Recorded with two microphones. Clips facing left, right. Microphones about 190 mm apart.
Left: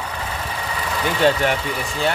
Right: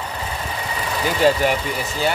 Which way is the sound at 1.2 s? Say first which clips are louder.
Right 1 dB; 5° right (ahead or behind).